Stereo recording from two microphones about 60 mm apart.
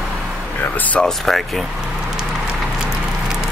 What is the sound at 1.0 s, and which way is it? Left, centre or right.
Speech, centre.